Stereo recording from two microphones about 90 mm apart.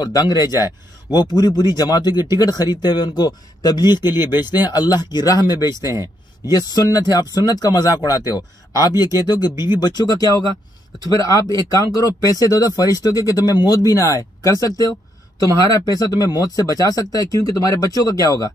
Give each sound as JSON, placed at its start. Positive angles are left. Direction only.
{"t": 0.0, "sound": "speech", "side_deg": 45}